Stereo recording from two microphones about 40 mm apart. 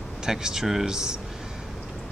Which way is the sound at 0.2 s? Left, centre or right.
Centre.